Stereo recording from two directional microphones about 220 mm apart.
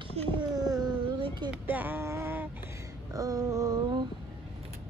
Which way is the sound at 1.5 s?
10° right (ahead or behind).